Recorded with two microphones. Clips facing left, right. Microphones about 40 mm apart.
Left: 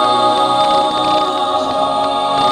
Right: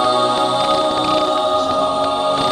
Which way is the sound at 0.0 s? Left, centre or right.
Left.